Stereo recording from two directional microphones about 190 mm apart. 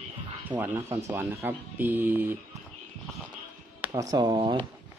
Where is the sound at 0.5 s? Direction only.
10° right (ahead or behind).